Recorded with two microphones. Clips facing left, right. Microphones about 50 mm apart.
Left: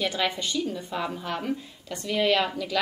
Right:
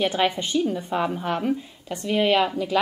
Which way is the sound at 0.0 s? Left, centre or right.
Right.